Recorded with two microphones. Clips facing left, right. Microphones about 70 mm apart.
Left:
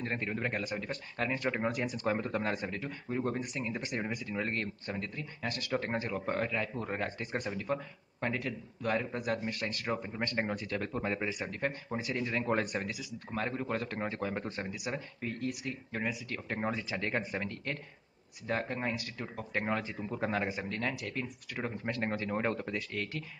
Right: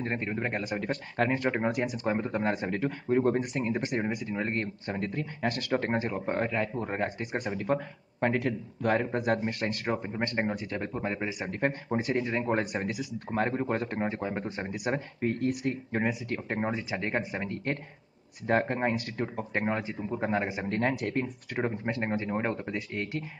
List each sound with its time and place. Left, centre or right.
0.0 s speech: right
0.7 s speech: right
2.0 s speech: right
2.6 s speech: right
4.3 s speech: right
5.9 s speech: right
7.5 s speech: right
10.9 s speech: centre
11.9 s speech: right
12.8 s speech: right; by 14.4 s centre
14.7 s speech: right
16.5 s speech: right
19.2 s speech: right
20.5 s speech: right; by 22.8 s centre